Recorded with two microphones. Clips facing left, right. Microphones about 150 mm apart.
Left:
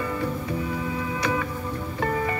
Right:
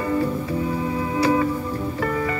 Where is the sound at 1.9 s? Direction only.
30° left (ahead or behind).